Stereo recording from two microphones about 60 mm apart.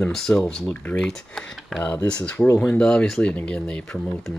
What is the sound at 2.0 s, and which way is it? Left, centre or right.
Speech, centre.